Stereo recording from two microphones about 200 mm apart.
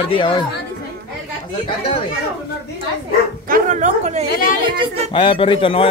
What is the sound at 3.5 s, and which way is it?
Speech, 40° right (ahead or behind).